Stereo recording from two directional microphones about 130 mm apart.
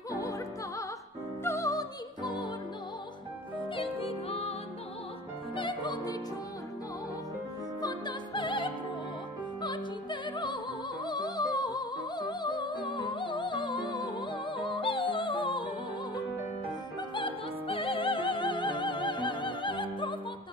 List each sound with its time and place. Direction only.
0.1 s music: 25° left (ahead or behind)
3.5 s music: 40° left (ahead or behind)
5.6 s music: 35° left (ahead or behind)
8.4 s music: 40° left (ahead or behind)
10.3 s music: 35° left (ahead or behind)
17.1 s music: 40° left (ahead or behind)